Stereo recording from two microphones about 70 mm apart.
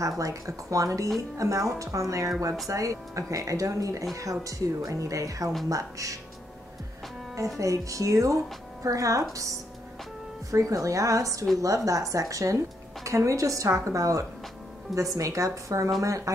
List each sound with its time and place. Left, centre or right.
0.2 s a woman's voice: right
7.3 s a woman's voice: right
10.5 s a woman's voice: right